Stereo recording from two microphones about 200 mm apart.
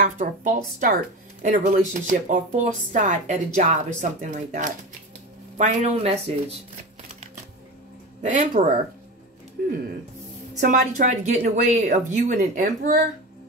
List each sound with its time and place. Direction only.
0.0 s speech: 40° right (ahead or behind)
8.2 s speech: 35° right (ahead or behind)
10.6 s speech: 40° right (ahead or behind)